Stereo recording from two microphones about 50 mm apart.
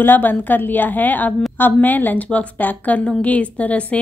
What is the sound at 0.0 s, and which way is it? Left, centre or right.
A woman's voice, left.